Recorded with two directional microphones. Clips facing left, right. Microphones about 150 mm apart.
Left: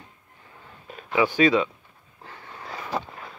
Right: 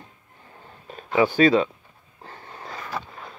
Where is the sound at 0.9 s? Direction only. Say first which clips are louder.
Right 2 dB; 35° right (ahead or behind).